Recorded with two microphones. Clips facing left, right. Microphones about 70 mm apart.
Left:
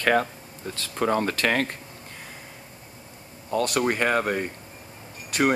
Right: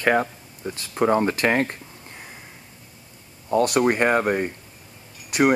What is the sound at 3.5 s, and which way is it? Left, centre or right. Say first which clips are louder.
Speech: right 5 dB; centre.